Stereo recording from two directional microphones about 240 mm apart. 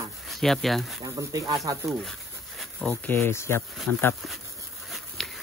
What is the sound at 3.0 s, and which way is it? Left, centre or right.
Speech, centre.